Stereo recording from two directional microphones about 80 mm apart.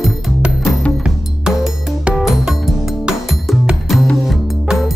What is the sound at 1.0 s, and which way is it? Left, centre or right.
Music, centre.